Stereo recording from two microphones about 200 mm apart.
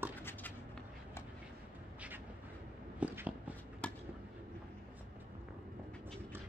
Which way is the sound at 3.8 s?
5° left (ahead or behind).